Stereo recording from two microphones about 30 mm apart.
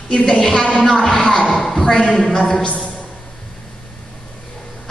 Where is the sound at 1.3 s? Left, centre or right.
Left.